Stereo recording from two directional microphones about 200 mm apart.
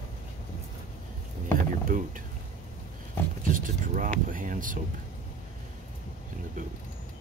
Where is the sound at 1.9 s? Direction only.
40° right (ahead or behind).